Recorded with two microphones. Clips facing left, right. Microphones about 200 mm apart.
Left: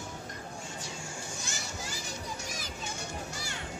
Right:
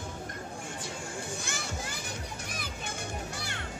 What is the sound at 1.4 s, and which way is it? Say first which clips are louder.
Children playing: right 3 dB; 55° right (ahead or behind).